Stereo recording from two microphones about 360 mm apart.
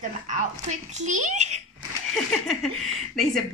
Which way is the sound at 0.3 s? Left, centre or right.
Centre.